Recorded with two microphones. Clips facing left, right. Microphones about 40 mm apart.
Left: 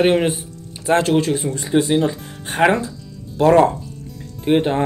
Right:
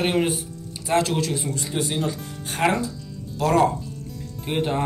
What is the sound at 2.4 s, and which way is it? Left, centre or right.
Speech, centre.